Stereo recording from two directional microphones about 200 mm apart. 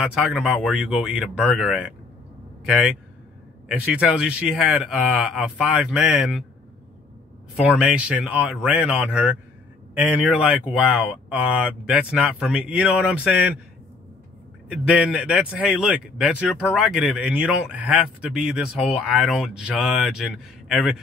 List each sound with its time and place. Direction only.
0.1 s a man's voice: 5° right (ahead or behind)
7.6 s a man's voice: 5° right (ahead or behind)
14.7 s a man's voice: 5° right (ahead or behind)